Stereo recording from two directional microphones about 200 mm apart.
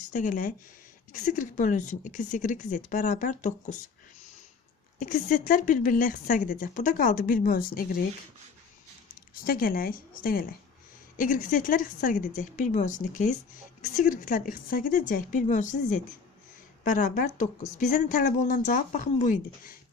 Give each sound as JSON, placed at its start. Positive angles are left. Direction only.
{"t": 0.1, "sound": "speech", "side_deg": 40}
{"t": 4.9, "sound": "speech", "side_deg": 40}
{"t": 9.3, "sound": "a woman's voice", "side_deg": 45}